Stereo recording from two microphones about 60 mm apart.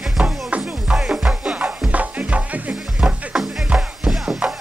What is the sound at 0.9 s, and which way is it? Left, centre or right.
Music, centre.